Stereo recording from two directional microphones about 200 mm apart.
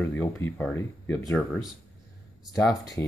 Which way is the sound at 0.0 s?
10° left (ahead or behind).